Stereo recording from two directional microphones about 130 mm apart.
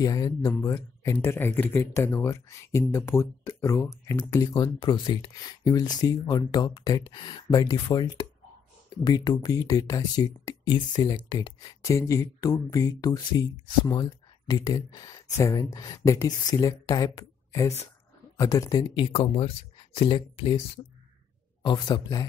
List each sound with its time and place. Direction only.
0.0 s speech: 25° left (ahead or behind)
18.9 s speech: 45° left (ahead or behind)